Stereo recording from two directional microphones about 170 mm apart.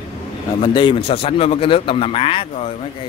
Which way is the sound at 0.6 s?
25° left (ahead or behind).